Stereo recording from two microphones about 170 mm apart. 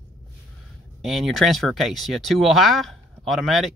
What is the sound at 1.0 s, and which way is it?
Speech, centre (ahead or behind).